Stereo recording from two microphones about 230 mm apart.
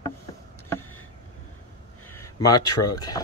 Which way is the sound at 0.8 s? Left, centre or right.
Left.